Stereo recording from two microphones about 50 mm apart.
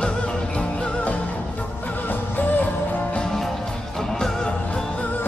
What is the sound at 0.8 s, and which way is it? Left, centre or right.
Music, left.